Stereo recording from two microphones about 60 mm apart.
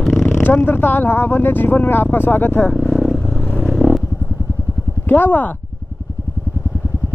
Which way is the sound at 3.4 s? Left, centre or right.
Centre.